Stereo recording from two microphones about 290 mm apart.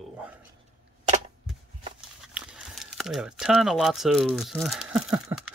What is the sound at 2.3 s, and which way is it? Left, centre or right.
Speech, centre.